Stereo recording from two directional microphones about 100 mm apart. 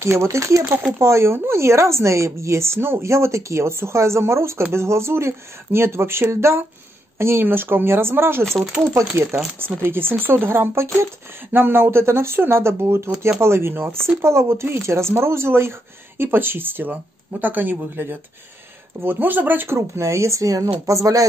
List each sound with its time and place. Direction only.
0.0 s speech: 30° right (ahead or behind)
8.5 s speech: centre (ahead or behind)
9.1 s speech: 25° right (ahead or behind)